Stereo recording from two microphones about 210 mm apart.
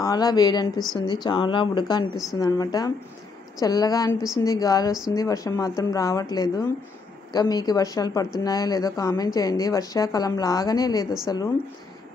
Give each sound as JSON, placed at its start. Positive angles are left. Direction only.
{"t": 0.0, "sound": "a woman's voice", "side_deg": 20}